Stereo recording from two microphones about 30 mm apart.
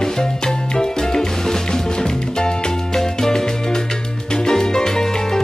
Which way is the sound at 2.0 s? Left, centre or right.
Left.